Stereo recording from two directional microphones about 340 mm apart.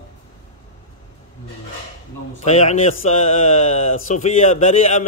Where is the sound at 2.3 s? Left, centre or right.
Centre.